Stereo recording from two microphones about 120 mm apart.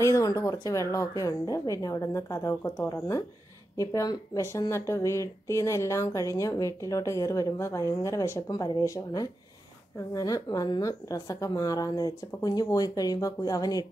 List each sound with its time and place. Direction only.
0.0 s a woman's voice: 30° left (ahead or behind)